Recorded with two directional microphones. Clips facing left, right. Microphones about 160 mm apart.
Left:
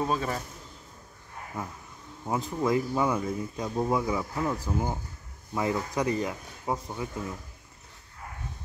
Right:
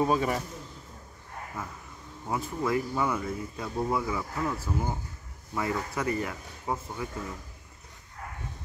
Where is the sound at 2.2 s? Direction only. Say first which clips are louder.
Left 2 dB; 20° left (ahead or behind).